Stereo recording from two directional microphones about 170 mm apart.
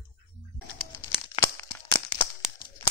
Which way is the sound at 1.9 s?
30° left (ahead or behind).